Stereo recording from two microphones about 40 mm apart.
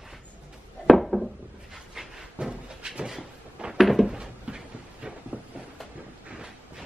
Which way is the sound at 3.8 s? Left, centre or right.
Centre.